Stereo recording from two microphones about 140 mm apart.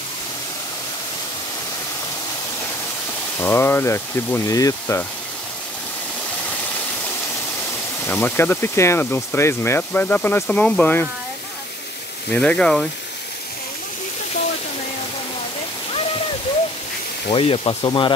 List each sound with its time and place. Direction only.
3.3 s speech: 15° left (ahead or behind)
8.1 s speech: 15° left (ahead or behind)
12.3 s speech: 5° left (ahead or behind)
17.3 s speech: 40° left (ahead or behind)